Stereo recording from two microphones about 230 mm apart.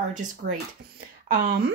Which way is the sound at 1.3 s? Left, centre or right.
Right.